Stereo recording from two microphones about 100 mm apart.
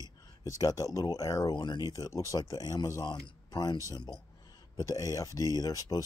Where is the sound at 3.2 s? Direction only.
45° left (ahead or behind).